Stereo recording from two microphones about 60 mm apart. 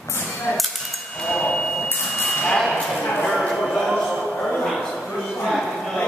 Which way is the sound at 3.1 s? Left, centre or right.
Left.